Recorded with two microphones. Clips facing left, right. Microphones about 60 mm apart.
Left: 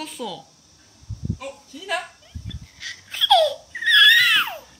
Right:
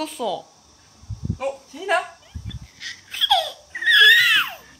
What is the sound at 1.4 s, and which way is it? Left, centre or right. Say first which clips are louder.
Speech: right 8 dB; right.